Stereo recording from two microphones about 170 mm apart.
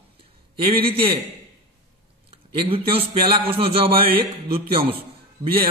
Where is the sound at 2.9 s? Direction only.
35° right (ahead or behind).